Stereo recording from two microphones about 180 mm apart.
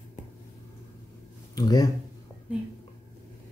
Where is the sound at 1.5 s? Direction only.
20° left (ahead or behind).